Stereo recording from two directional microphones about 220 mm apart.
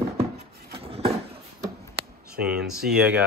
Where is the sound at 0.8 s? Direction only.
25° right (ahead or behind).